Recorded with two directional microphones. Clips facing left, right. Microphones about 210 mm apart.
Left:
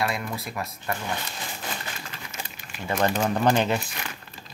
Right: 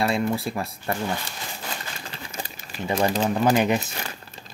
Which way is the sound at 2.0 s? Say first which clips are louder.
Right 3 dB; 35° right (ahead or behind).